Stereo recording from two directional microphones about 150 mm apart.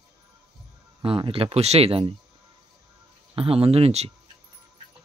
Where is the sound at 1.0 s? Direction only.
35° right (ahead or behind).